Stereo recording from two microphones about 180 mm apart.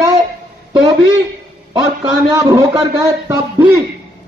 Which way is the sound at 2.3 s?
20° right (ahead or behind).